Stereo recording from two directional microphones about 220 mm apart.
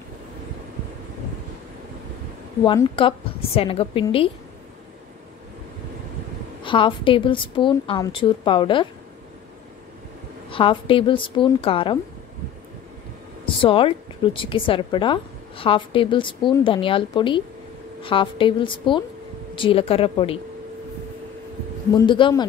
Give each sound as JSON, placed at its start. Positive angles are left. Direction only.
{"t": 2.6, "sound": "a woman's voice", "side_deg": 20}
{"t": 6.6, "sound": "a woman's voice", "side_deg": 20}
{"t": 10.5, "sound": "a woman's voice", "side_deg": 25}
{"t": 13.6, "sound": "a woman's voice", "side_deg": 25}
{"t": 21.9, "sound": "a woman's voice", "side_deg": 20}